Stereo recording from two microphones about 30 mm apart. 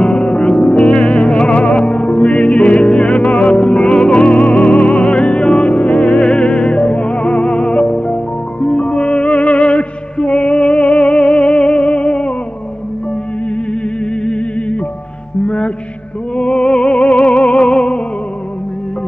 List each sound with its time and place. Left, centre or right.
0.0 s music: left
5.8 s music: left
14.2 s music: left